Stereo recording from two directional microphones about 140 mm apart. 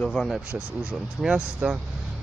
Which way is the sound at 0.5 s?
10° right (ahead or behind).